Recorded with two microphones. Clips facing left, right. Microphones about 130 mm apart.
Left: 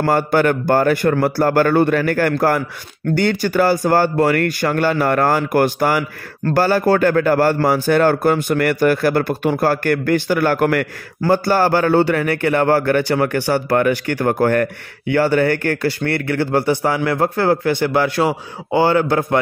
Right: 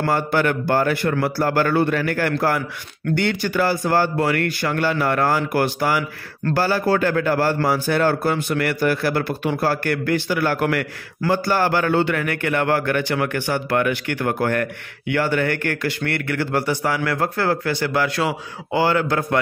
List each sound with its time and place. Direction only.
0.0 s speech: 45° left (ahead or behind)
11.4 s a man's voice: 35° left (ahead or behind)